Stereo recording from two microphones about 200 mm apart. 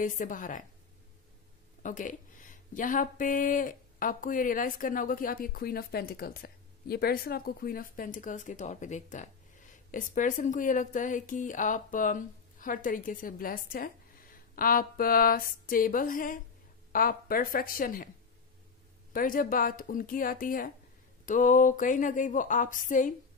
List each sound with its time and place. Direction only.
0.2 s speech: 40° left (ahead or behind)
1.8 s speech: 40° left (ahead or behind)
19.1 s speech: 45° left (ahead or behind)